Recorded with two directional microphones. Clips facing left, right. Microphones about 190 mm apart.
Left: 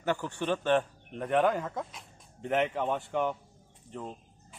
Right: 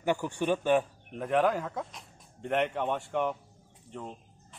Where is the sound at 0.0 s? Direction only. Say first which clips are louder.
Right 2 dB; 15° right (ahead or behind).